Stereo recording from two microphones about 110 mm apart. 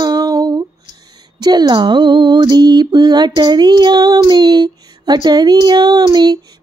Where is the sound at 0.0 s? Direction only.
35° right (ahead or behind).